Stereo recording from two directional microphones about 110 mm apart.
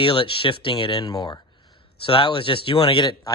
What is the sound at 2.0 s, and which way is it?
Speech, 55° left (ahead or behind).